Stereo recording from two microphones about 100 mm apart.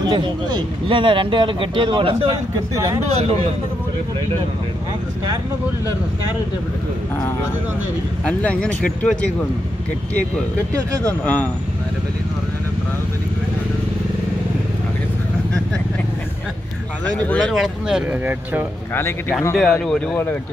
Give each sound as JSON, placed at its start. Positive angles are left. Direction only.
{"t": 0.0, "sound": "speech", "side_deg": -45}
{"t": 8.3, "sound": "speech", "side_deg": 10}
{"t": 10.7, "sound": "speech", "side_deg": -35}
{"t": 11.2, "sound": "speech", "side_deg": 15}
{"t": 17.2, "sound": "speech", "side_deg": 10}
{"t": 17.6, "sound": "speech", "side_deg": -5}
{"t": 18.2, "sound": "speech", "side_deg": -20}
{"t": 18.9, "sound": "speech", "side_deg": 25}
{"t": 19.5, "sound": "speech", "side_deg": 5}